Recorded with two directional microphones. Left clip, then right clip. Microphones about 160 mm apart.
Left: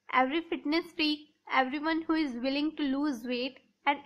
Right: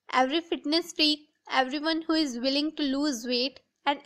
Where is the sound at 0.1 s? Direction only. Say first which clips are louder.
Right 2 dB; 35° right (ahead or behind).